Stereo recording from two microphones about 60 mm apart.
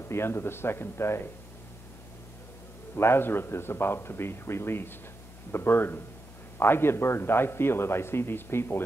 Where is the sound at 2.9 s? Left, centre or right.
Left.